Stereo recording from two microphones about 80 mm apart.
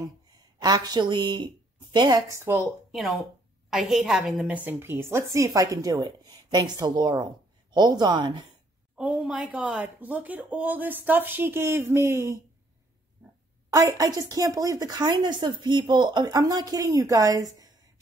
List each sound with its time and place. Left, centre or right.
0.6 s a woman's voice: right
2.3 s a woman's voice: right
2.9 s a woman's voice: centre
4.6 s speech: right
8.9 s speech: centre; by 12.4 s right
13.7 s speech: right